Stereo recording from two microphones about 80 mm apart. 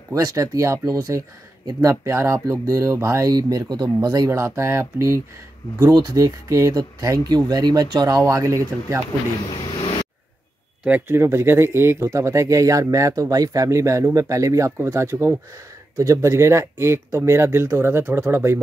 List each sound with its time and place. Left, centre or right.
0.1 s speech: right
5.8 s speech: right
11.1 s speech: right